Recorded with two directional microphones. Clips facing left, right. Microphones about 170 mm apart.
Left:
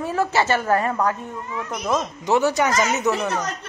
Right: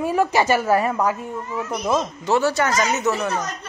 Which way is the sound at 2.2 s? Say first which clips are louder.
Left 1 dB; 15° left (ahead or behind).